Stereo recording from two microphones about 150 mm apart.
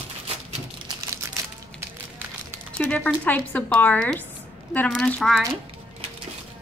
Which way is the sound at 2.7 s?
10° left (ahead or behind).